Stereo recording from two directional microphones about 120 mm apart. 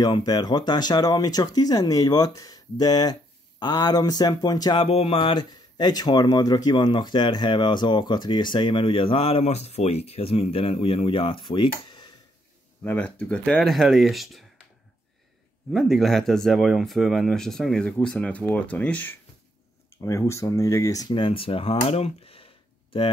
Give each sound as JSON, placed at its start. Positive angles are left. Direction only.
{"t": 0.0, "sound": "speech", "side_deg": 35}
{"t": 4.8, "sound": "speech", "side_deg": 55}
{"t": 5.5, "sound": "speech", "side_deg": 35}
{"t": 12.8, "sound": "speech", "side_deg": 15}
{"t": 15.7, "sound": "speech", "side_deg": 0}
{"t": 20.0, "sound": "speech", "side_deg": 25}
{"t": 21.1, "sound": "speech", "side_deg": 45}